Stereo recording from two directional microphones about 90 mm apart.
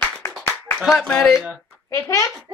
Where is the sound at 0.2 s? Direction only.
30° left (ahead or behind).